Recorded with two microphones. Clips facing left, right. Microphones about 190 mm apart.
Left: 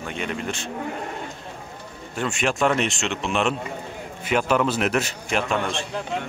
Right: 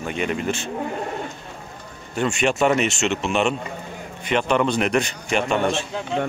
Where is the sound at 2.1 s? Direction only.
Centre (ahead or behind).